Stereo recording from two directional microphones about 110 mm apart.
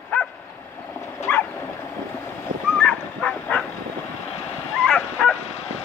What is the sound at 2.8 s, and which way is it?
Dog, 5° left (ahead or behind).